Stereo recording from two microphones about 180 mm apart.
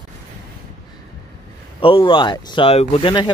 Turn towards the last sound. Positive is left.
turn(degrees=25)  # may be behind; listen again after turning